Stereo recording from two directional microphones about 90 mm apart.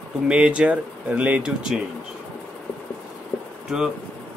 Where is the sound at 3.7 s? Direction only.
5° right (ahead or behind).